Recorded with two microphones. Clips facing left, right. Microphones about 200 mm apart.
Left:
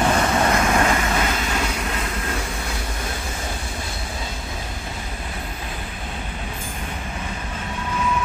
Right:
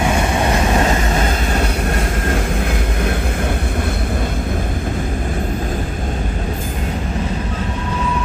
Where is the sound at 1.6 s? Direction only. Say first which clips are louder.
Right 6 dB; 50° right (ahead or behind).